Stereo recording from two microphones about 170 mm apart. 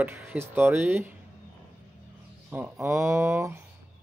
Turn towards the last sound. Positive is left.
turn(degrees=-15)  # may be behind; listen again after turning